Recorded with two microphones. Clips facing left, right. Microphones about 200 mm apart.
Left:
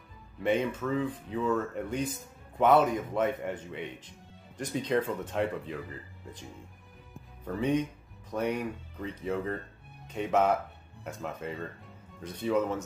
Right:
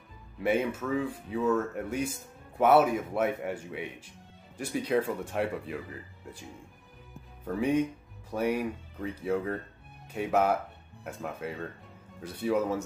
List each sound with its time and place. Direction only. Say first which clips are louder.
0.4 s speech: even; 5° right (ahead or behind)
7.4 s speech: right 2 dB; 10° right (ahead or behind)